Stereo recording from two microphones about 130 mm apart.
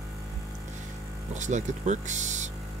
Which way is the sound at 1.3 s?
65° right (ahead or behind).